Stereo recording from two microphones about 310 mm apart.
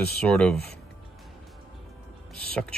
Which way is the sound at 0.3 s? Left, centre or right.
Centre.